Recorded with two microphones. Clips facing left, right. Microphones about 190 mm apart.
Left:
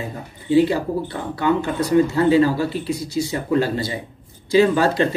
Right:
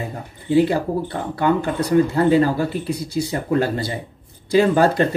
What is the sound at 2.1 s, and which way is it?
A man's voice, 55° right (ahead or behind).